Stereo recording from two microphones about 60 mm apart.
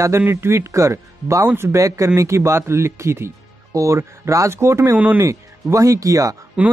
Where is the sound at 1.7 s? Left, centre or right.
Right.